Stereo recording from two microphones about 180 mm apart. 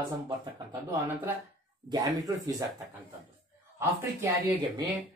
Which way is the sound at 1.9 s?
20° right (ahead or behind).